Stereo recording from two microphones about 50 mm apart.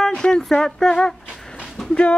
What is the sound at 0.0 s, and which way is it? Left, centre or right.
Speech, centre.